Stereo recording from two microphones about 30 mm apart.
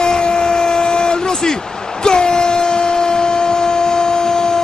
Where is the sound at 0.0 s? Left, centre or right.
Left.